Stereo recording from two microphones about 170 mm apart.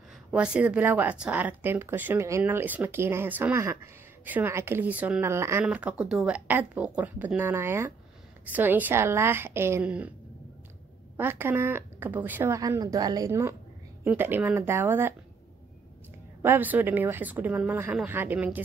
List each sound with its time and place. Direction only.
0.3 s speech: 5° right (ahead or behind)
11.1 s speech: 10° right (ahead or behind)
16.4 s speech: 10° right (ahead or behind)